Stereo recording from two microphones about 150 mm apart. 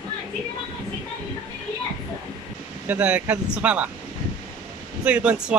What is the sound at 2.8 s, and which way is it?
Speech, 10° right (ahead or behind).